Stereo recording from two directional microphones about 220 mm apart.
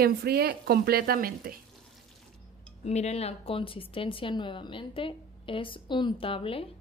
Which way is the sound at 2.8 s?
30° left (ahead or behind).